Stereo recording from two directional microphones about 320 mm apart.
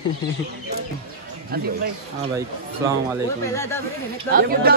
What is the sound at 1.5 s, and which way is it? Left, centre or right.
Speech, right.